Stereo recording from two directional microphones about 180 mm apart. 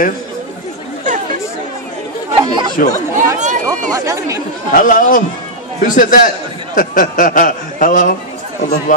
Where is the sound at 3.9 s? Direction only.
15° right (ahead or behind).